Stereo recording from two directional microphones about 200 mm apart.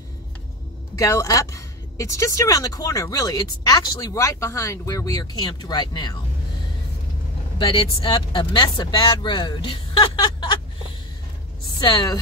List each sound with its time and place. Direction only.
0.9 s speech: 15° left (ahead or behind)
7.5 s speech: 25° left (ahead or behind)
11.8 s speech: 20° left (ahead or behind)